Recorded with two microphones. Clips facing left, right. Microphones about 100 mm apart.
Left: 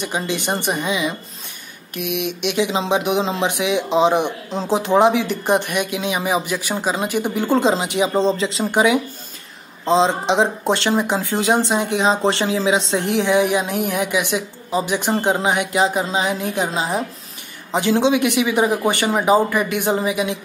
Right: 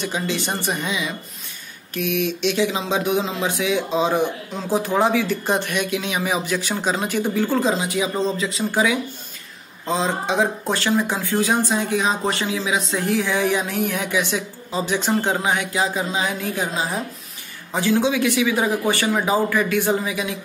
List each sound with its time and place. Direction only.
0.0 s speech: 15° left (ahead or behind)
7.5 s speech: 30° left (ahead or behind)